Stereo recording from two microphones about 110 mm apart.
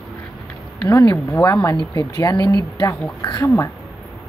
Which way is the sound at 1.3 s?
30° left (ahead or behind).